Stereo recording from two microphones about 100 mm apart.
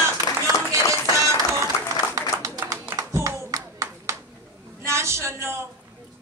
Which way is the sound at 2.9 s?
35° right (ahead or behind).